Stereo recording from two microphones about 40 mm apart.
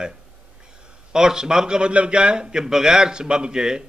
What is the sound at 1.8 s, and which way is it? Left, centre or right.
A man's voice, right.